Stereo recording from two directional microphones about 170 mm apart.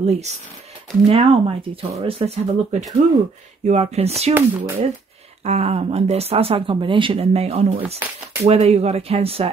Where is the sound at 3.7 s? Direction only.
40° right (ahead or behind).